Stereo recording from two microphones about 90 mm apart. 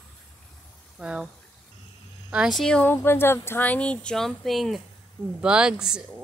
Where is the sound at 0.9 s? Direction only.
10° right (ahead or behind).